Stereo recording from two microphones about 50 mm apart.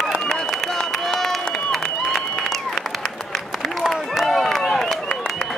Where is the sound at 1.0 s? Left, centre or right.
Centre.